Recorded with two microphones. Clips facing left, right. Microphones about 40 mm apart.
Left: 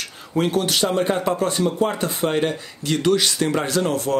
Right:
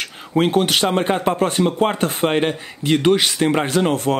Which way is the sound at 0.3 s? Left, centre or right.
Right.